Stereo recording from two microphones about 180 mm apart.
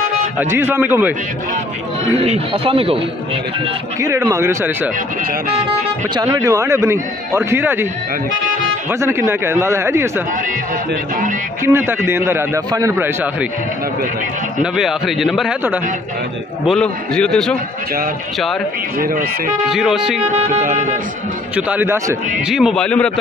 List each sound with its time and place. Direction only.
0.4 s a man's voice: 10° right (ahead or behind)
2.1 s speech: 35° right (ahead or behind)
4.0 s a man's voice: 15° right (ahead or behind)
6.1 s a man's voice: 15° right (ahead or behind)
9.0 s a man's voice: 15° right (ahead or behind)
11.6 s a man's voice: 10° right (ahead or behind)
14.6 s a man's voice: centre (ahead or behind)
18.9 s music: 50° right (ahead or behind)
19.7 s a man's voice: centre (ahead or behind)
20.2 s music: 40° right (ahead or behind)
21.5 s a man's voice: 10° right (ahead or behind)
22.5 s a man's voice: centre (ahead or behind)